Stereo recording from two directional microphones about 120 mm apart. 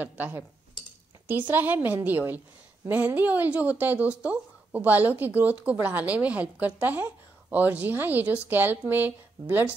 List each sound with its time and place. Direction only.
0.0 s a woman's voice: 15° right (ahead or behind)
1.5 s a woman's voice: 15° right (ahead or behind)